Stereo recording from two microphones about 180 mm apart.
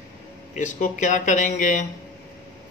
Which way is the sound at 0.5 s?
45° left (ahead or behind).